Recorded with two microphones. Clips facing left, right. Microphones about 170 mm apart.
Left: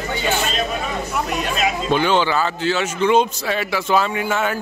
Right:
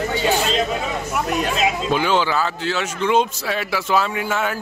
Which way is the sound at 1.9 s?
5° right (ahead or behind).